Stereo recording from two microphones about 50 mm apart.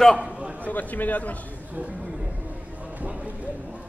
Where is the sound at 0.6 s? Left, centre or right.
Left.